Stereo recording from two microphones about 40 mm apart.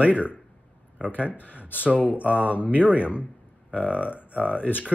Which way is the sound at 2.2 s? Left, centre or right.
Right.